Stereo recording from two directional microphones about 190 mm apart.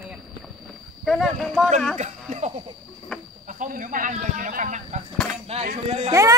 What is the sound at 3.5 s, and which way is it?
Speech, 45° right (ahead or behind).